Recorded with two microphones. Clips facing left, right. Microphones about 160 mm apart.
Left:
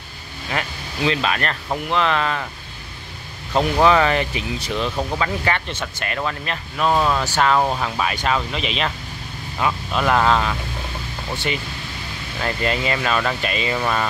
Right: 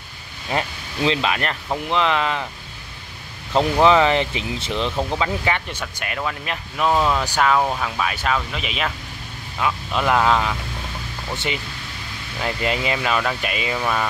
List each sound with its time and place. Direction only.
0.5 s speech: 25° right (ahead or behind)
3.8 s speech: 20° right (ahead or behind)
7.5 s speech: 5° left (ahead or behind)
9.9 s speech: 10° right (ahead or behind)